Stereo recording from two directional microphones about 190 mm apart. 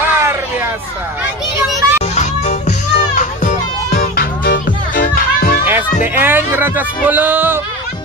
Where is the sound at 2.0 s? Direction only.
40° left (ahead or behind).